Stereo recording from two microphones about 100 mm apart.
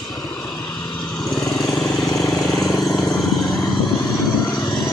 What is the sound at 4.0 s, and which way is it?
Vehicle, 45° left (ahead or behind).